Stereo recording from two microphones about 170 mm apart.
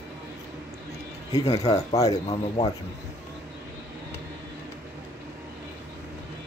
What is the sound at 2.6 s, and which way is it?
Speech, 35° left (ahead or behind).